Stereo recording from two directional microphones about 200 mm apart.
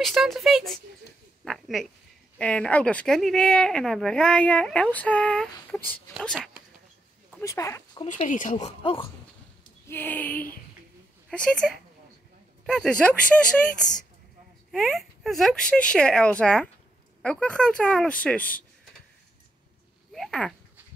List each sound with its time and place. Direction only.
0.0 s speech: centre (ahead or behind)
1.4 s a sound: centre (ahead or behind)
2.3 s speech: 5° left (ahead or behind)
7.3 s speech: 15° left (ahead or behind)
8.1 s speech: 40° left (ahead or behind)
8.6 s speech: 25° left (ahead or behind)
9.8 s a sound: 10° left (ahead or behind)
11.2 s speech: 5° left (ahead or behind)
14.7 s speech: centre (ahead or behind)
20.1 s speech: centre (ahead or behind)